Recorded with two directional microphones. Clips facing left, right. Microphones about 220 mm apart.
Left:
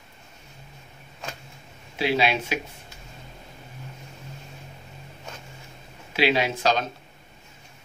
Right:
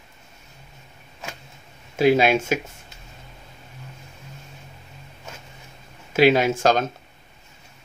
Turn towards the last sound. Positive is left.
turn(degrees=-50)  # may be behind; listen again after turning